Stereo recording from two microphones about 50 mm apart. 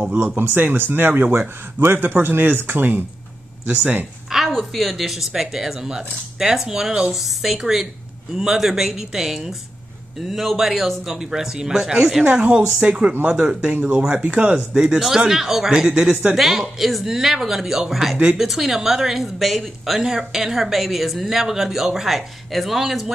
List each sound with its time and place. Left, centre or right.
0.0 s speech: right
0.4 s speech: right
3.6 s speech: right
4.3 s a sound: centre
4.7 s a woman's voice: centre
10.5 s a woman's voice: centre
15.0 s a woman's voice: centre
15.9 s speech: right
16.3 s a woman's voice: centre